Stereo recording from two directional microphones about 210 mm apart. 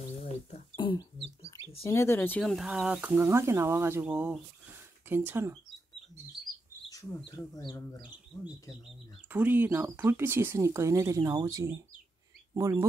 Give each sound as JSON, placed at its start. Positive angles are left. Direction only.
{"t": 0.2, "sound": "a sound", "side_deg": 25}
{"t": 1.9, "sound": "speech", "side_deg": 10}
{"t": 7.2, "sound": "speech", "side_deg": 20}
{"t": 9.3, "sound": "speech", "side_deg": -10}